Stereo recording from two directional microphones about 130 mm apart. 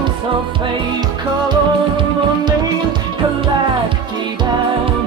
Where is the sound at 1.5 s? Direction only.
35° right (ahead or behind).